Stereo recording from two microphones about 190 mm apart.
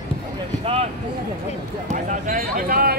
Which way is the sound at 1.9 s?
45° right (ahead or behind).